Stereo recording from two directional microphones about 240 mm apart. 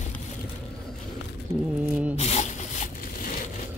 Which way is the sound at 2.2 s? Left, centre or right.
Left.